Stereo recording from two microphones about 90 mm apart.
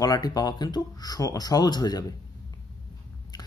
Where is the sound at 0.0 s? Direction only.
45° left (ahead or behind).